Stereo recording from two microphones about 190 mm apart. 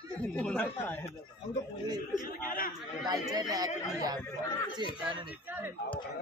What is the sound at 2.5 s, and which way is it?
Speech, 50° left (ahead or behind).